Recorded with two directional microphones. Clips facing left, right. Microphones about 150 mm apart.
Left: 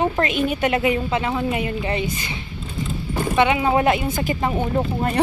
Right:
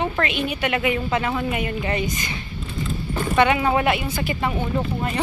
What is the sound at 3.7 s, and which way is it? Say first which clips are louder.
Speech: left 3 dB; 35° left (ahead or behind).